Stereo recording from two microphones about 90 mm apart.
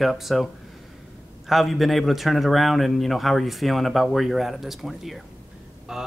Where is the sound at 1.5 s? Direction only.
Centre (ahead or behind).